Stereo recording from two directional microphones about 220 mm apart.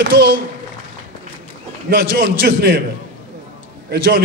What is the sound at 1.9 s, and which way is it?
Speech, 40° right (ahead or behind).